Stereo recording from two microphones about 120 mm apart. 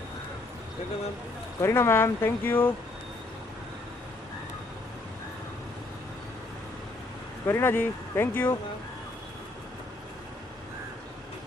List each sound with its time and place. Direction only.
1.6 s speech: 20° left (ahead or behind)
7.4 s speech: 20° left (ahead or behind)